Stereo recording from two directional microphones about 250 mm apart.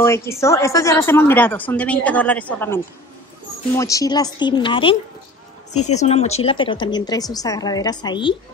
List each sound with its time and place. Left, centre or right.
0.0 s a woman's voice: centre